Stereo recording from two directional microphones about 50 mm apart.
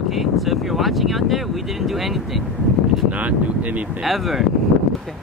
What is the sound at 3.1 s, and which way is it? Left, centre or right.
Speech, right.